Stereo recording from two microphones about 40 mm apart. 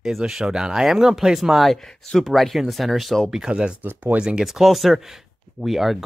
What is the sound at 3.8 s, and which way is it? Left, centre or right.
Speech, right.